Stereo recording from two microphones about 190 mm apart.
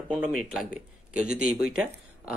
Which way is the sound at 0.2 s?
Centre (ahead or behind).